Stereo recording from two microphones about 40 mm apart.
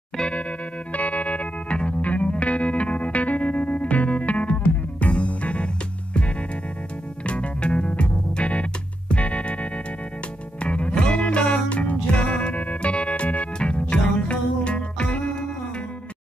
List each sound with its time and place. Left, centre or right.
0.2 s music: left
7.2 s music: left